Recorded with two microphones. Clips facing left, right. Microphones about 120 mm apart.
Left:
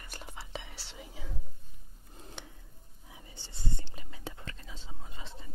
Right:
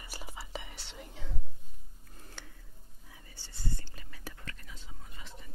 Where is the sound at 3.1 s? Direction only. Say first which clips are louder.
Left 4 dB; 20° left (ahead or behind).